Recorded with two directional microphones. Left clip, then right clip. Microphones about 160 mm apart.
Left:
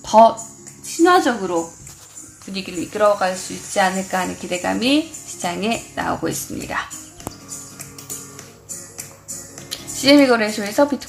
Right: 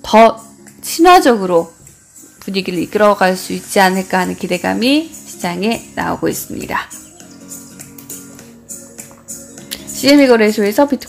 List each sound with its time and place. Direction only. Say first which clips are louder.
0.0 s a sound: right 3 dB; 40° right (ahead or behind)
0.9 s a woman's voice: right 7 dB; 50° right (ahead or behind); by 6.9 s 30° right (ahead or behind)
9.7 s speech: right 3 dB; 30° right (ahead or behind)